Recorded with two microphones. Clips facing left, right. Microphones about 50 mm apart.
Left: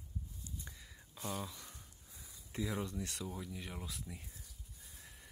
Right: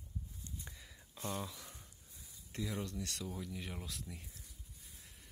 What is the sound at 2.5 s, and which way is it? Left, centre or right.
Speech, centre.